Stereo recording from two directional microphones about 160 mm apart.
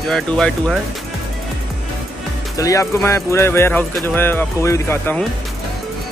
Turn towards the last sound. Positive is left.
turn(degrees=15)  # may be behind; listen again after turning